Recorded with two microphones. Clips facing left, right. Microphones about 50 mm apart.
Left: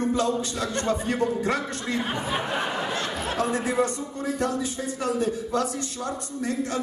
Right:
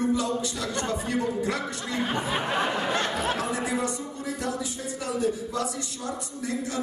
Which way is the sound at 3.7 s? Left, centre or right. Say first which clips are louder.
Left 4 dB; left.